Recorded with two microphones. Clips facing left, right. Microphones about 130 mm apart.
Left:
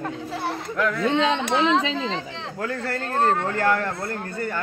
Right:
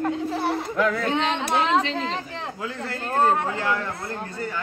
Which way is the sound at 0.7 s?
5° right (ahead or behind).